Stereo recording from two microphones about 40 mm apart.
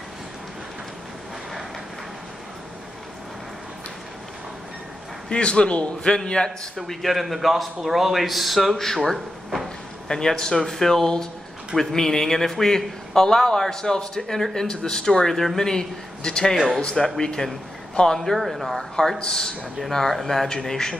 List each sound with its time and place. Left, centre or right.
5.3 s a man's voice: left
6.9 s a man's voice: centre
10.0 s a man's voice: centre
18.3 s a man's voice: centre
18.8 s a man's voice: centre
19.8 s a man's voice: centre